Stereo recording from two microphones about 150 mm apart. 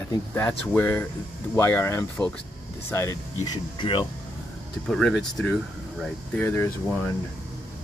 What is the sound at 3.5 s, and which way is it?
Speech, 30° left (ahead or behind).